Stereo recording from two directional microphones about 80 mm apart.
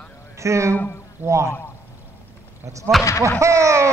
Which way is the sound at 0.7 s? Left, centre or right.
Left.